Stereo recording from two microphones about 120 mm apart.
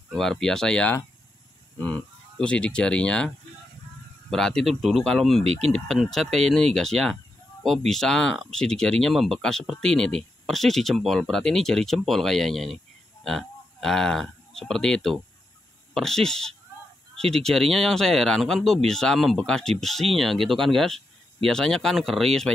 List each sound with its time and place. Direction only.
0.1 s speech: 5° left (ahead or behind)
4.3 s speech: 5° left (ahead or behind)
5.4 s speech: 60° right (ahead or behind)
5.7 s speech: 5° left (ahead or behind)